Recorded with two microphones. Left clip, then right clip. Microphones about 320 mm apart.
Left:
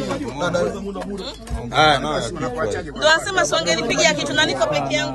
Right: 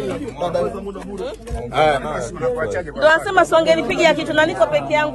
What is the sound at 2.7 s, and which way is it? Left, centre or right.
A man's voice, centre.